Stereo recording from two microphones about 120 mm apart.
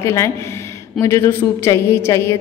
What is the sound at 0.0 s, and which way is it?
A woman's voice, 25° left (ahead or behind).